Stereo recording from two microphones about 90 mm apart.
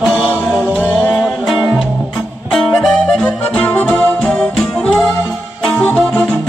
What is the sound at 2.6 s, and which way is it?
Music, 10° left (ahead or behind).